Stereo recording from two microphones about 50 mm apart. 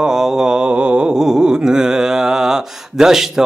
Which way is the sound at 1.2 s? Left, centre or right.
Centre.